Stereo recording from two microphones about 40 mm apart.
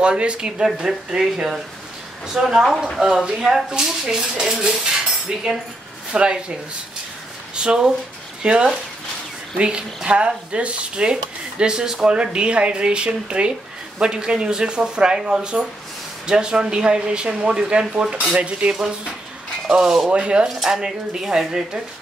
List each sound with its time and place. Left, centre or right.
0.0 s speech: right
0.8 s speech: centre
7.5 s speech: right
19.7 s speech: centre
20.1 s speech: right
20.6 s speech: centre